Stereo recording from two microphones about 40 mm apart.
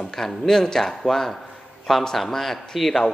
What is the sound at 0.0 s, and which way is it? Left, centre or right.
A man's voice, centre.